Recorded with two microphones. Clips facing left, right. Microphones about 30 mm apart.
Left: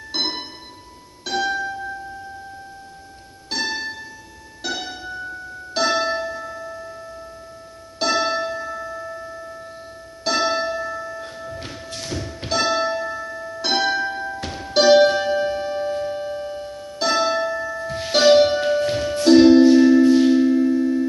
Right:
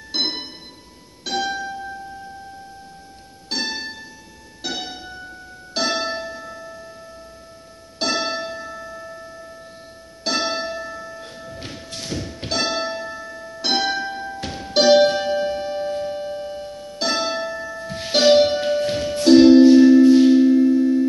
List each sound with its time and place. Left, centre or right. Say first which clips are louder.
0.1 s music: right 1 dB; right
3.4 s music: left 1 dB; right
8.0 s music: left 3 dB; right
10.2 s music: left 3 dB; right
11.1 s music: left 3 dB; centre
12.4 s music: left 3 dB; right
15.3 s music: left 1 dB; centre
17.0 s music: left 3 dB; right
17.8 s music: even; centre
19.8 s music: right 2 dB; centre
20.5 s music: right 3 dB; centre